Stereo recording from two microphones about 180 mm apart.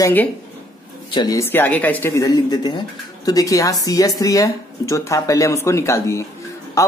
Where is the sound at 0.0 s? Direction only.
10° left (ahead or behind).